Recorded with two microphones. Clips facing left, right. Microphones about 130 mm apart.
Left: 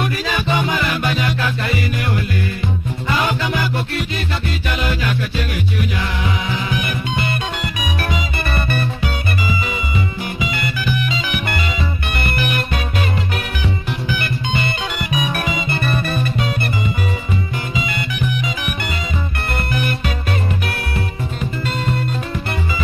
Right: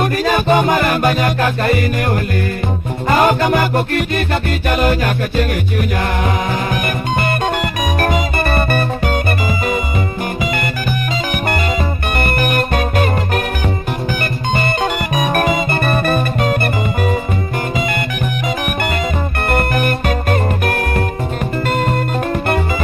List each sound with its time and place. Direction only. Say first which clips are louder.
0.0 s music: right 6 dB; 45° right (ahead or behind)
14.5 s music: right 9 dB; 50° right (ahead or behind)
19.5 s music: right 6 dB; 50° right (ahead or behind)